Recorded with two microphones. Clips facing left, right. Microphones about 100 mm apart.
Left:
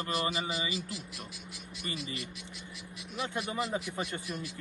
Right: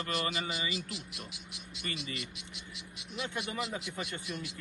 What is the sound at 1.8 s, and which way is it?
Speech, 30° left (ahead or behind).